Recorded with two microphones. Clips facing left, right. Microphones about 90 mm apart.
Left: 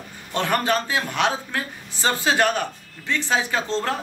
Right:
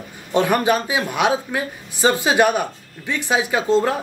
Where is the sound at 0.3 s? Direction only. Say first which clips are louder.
Right 5 dB; 15° right (ahead or behind).